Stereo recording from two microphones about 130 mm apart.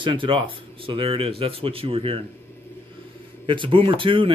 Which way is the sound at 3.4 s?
40° right (ahead or behind).